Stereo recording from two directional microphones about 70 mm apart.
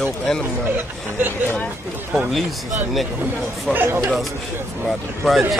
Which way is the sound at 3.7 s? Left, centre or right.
Right.